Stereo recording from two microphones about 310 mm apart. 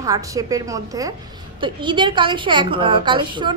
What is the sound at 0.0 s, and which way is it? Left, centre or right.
A woman's voice, centre.